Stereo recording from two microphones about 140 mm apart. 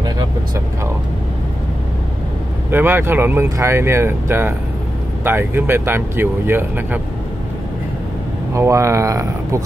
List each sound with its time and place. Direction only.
2.7 s speech: 15° right (ahead or behind)
8.5 s speech: 20° right (ahead or behind)